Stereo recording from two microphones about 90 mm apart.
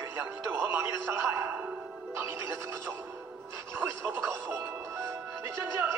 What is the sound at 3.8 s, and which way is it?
Speech, 25° right (ahead or behind).